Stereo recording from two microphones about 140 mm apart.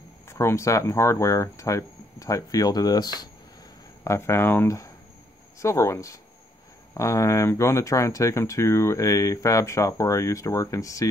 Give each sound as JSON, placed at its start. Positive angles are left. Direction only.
{"t": 0.3, "sound": "speech", "side_deg": 20}